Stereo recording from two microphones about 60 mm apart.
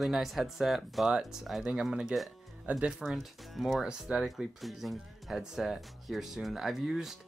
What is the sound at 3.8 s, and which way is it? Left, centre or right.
Speech, centre.